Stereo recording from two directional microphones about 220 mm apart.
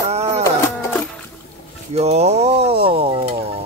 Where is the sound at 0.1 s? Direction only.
30° right (ahead or behind).